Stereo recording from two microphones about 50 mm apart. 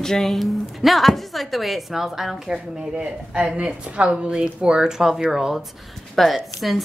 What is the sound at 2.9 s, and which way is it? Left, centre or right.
A woman's voice, right.